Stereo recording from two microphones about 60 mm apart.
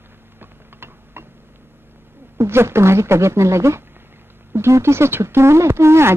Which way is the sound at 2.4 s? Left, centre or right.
Right.